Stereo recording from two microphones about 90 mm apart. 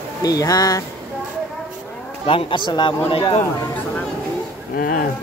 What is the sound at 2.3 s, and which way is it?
A man's voice, 75° left (ahead or behind).